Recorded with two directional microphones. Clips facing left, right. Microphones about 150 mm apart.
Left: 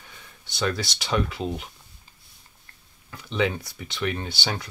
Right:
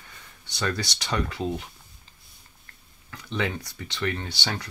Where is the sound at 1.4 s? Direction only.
20° left (ahead or behind).